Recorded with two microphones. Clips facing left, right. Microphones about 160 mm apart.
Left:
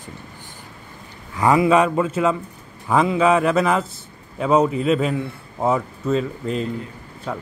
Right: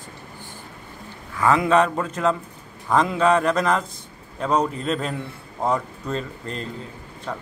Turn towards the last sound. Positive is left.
turn(degrees=5)  # may be behind; listen again after turning